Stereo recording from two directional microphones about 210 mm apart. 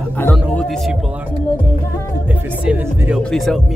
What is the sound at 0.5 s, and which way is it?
Speech, centre (ahead or behind).